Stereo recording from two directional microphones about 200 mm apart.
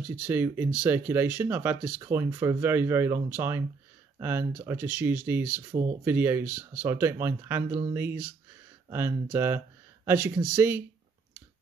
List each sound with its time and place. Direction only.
0.0 s speech: 10° right (ahead or behind)